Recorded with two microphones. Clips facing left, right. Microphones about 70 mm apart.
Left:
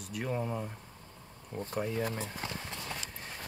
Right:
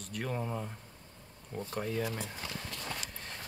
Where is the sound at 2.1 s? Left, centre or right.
Left.